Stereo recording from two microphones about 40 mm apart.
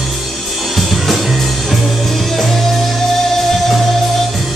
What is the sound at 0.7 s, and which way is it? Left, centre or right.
Music, centre.